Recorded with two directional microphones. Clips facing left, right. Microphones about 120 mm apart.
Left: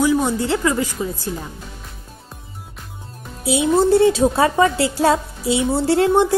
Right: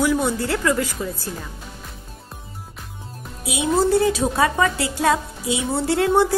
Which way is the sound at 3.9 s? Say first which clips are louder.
Left 4 dB; 30° left (ahead or behind).